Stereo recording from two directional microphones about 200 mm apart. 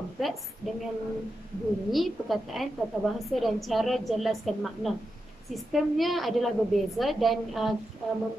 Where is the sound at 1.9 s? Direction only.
Centre (ahead or behind).